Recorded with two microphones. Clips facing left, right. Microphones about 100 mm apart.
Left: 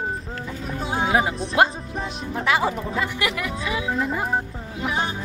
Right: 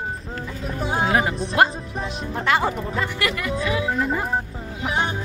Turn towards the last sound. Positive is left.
turn(degrees=5)  # may be behind; listen again after turning